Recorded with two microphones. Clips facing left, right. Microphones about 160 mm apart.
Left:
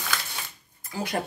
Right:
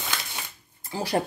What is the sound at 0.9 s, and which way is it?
Speech, 30° right (ahead or behind).